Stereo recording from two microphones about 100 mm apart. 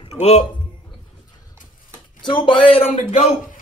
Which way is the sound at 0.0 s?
85° left.